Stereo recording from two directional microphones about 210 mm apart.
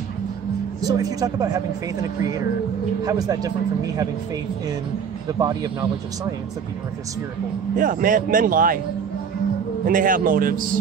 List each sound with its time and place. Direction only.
0.8 s a woman's voice: 15° right (ahead or behind)
5.4 s a woman's voice: 20° right (ahead or behind)
7.7 s speech: 40° right (ahead or behind)
9.8 s speech: 40° right (ahead or behind)